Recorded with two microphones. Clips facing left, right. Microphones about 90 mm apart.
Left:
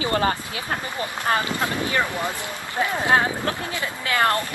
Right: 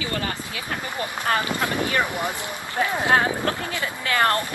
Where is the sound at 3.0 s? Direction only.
20° left (ahead or behind).